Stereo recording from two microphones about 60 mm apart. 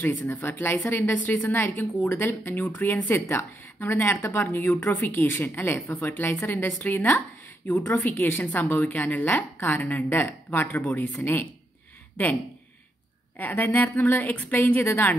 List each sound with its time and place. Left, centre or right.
0.0 s a woman's voice: left
3.9 s a woman's voice: left
13.4 s a woman's voice: left